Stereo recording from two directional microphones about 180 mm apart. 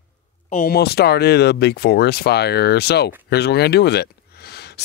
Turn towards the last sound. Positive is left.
turn(degrees=65)  # may be behind; listen again after turning